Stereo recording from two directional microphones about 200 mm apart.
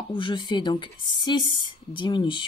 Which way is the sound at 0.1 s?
25° left (ahead or behind).